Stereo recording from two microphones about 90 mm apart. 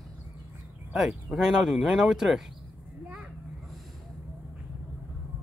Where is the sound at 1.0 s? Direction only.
5° right (ahead or behind).